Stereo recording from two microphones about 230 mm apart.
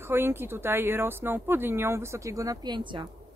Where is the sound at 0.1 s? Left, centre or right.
Centre.